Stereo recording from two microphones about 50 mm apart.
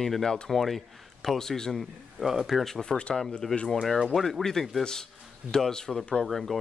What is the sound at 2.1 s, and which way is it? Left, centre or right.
Speech, centre.